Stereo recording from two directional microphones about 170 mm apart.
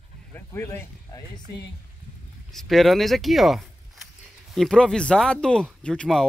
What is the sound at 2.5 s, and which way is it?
Speech, centre (ahead or behind).